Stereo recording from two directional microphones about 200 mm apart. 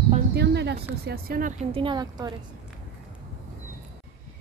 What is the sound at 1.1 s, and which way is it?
Speech, 45° right (ahead or behind).